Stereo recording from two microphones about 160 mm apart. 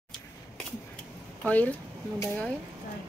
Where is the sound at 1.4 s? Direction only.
10° left (ahead or behind).